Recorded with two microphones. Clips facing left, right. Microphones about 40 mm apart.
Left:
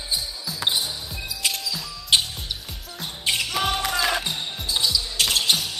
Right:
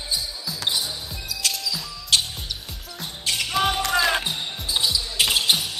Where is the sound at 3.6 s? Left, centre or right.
Centre.